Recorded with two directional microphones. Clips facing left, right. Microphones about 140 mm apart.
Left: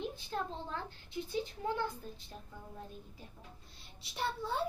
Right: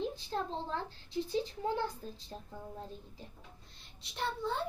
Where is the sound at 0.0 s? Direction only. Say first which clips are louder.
Right 2 dB; 30° right (ahead or behind).